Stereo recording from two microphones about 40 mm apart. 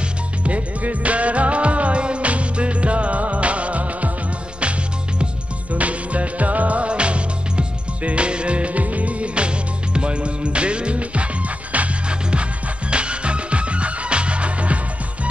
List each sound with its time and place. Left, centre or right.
0.4 s music: right
5.7 s music: right